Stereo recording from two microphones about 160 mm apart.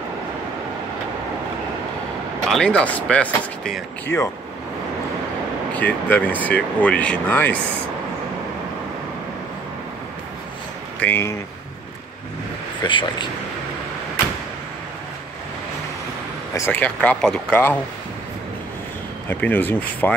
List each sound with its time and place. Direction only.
2.5 s speech: 5° left (ahead or behind)
5.7 s speech: 10° left (ahead or behind)
11.0 s speech: 15° left (ahead or behind)
12.8 s speech: 30° left (ahead or behind)
16.5 s speech: 15° left (ahead or behind)
19.2 s speech: 10° left (ahead or behind)